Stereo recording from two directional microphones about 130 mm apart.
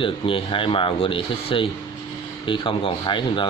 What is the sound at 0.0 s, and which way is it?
Speech, 40° left (ahead or behind).